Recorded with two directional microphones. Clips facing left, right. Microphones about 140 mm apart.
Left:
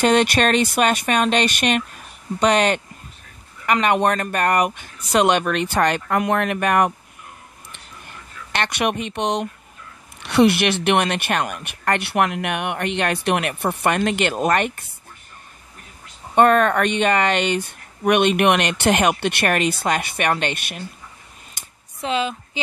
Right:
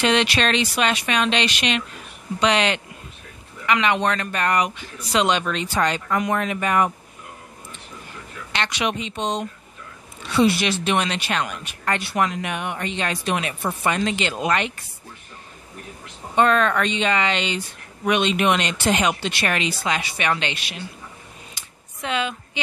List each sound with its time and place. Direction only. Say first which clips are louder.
0.0 s speech: left 4 dB; 45° left (ahead or behind)
8.5 s speech: left 3 dB; 55° left (ahead or behind)
16.3 s speech: left 3 dB; 50° left (ahead or behind)
21.6 s a sound: left 1 dB; 50° left (ahead or behind)
22.0 s a woman's voice: left 3 dB; 30° left (ahead or behind)